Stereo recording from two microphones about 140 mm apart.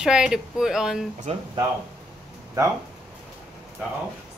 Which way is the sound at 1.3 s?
50° right (ahead or behind).